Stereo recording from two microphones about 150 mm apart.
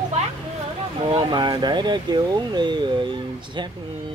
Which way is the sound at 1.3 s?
30° right (ahead or behind).